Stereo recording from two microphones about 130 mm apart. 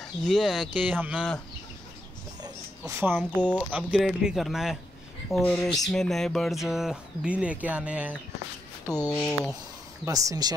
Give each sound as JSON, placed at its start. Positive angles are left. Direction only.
{"t": 0.0, "sound": "speech", "side_deg": 0}
{"t": 0.8, "sound": "speech", "side_deg": -10}
{"t": 2.9, "sound": "speech", "side_deg": -15}
{"t": 3.2, "sound": "speech", "side_deg": 10}
{"t": 3.7, "sound": "speech", "side_deg": -5}
{"t": 9.1, "sound": "speech", "side_deg": 5}
{"t": 10.0, "sound": "speech", "side_deg": -25}